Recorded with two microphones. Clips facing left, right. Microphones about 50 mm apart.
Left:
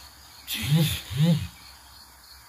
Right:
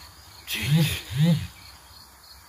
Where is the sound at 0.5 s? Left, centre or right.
Right.